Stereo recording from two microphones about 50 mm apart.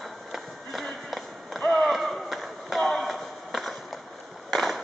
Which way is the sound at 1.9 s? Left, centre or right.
Centre.